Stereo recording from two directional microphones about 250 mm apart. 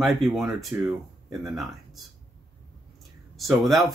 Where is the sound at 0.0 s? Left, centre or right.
Centre.